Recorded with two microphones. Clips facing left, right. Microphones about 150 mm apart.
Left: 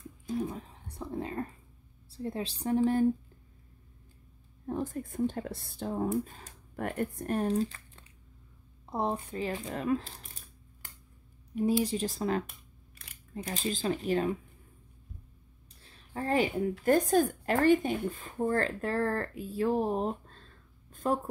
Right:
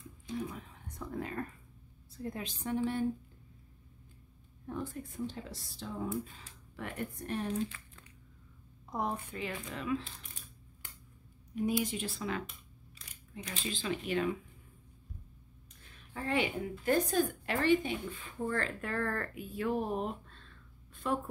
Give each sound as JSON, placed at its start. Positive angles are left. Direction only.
{"t": 0.3, "sound": "speech", "side_deg": 35}
{"t": 4.6, "sound": "speech", "side_deg": 40}
{"t": 15.8, "sound": "a sound", "side_deg": 35}
{"t": 16.8, "sound": "speech", "side_deg": 45}